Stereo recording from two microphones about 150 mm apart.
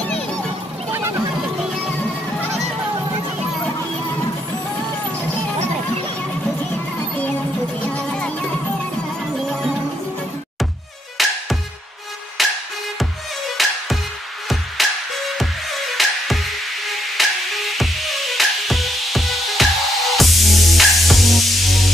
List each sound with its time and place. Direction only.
0.9 s a sound: 15° right (ahead or behind)
7.9 s music: 5° left (ahead or behind)
11.2 s music: centre (ahead or behind)
12.4 s music: centre (ahead or behind)
13.6 s music: centre (ahead or behind)